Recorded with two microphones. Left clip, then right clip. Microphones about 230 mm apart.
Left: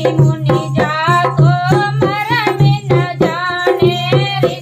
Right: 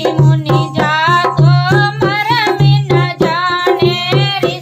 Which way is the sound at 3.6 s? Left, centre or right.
Right.